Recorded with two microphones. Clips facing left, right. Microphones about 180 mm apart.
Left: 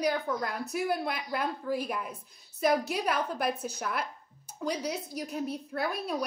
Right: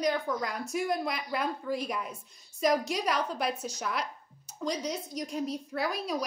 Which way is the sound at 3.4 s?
60° left (ahead or behind).